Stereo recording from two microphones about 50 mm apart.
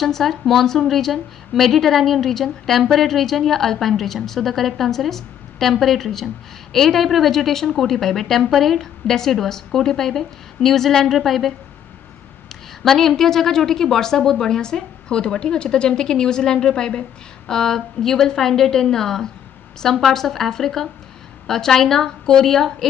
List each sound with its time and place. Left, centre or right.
0.0 s a woman's voice: centre